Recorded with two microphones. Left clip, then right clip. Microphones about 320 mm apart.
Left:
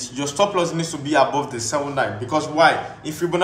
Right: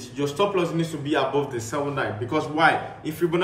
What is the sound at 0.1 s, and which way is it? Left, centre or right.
A man's voice, centre.